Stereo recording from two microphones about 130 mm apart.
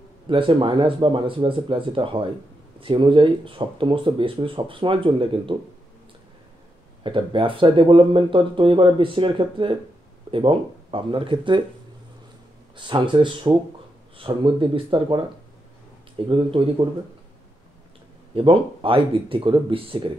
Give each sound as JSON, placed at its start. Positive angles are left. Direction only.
{"t": 0.3, "sound": "speech", "side_deg": -40}
{"t": 7.0, "sound": "speech", "side_deg": -40}
{"t": 12.7, "sound": "speech", "side_deg": -40}
{"t": 16.3, "sound": "speech", "side_deg": -45}
{"t": 18.3, "sound": "speech", "side_deg": -40}